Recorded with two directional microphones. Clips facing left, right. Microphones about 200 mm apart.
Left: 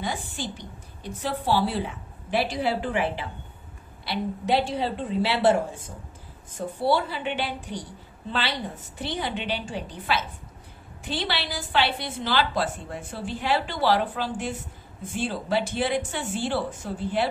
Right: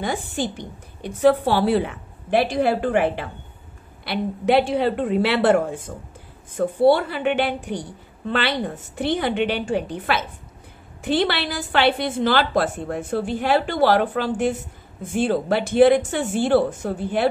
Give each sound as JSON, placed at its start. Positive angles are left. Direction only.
{"t": 0.0, "sound": "a woman's voice", "side_deg": -55}